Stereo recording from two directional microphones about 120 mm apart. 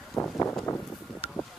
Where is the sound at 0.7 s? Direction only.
30° left (ahead or behind).